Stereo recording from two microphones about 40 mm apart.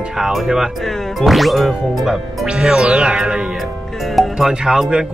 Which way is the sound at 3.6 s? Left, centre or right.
Centre.